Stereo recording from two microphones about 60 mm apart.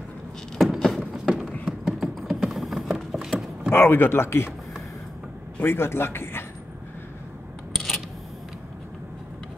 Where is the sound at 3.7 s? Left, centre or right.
Left.